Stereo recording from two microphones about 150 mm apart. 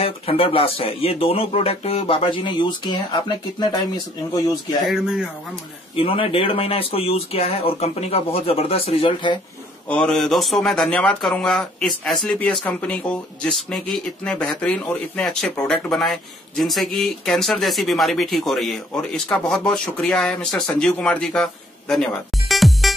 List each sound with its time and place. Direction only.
0.0 s speech: 40° left (ahead or behind)
4.8 s a man's voice: 5° right (ahead or behind)
5.9 s speech: 40° left (ahead or behind)
9.8 s a man's voice: 5° left (ahead or behind)